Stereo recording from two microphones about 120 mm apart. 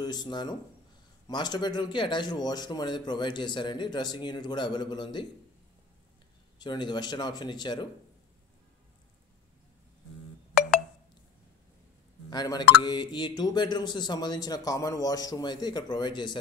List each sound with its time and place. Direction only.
0.0 s speech: 35° left (ahead or behind)
6.6 s speech: 40° left (ahead or behind)
12.3 s speech: 35° left (ahead or behind)